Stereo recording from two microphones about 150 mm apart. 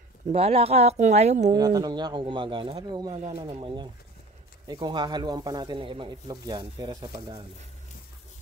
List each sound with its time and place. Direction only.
0.3 s a woman's voice: 40° right (ahead or behind)
1.5 s speech: 25° right (ahead or behind)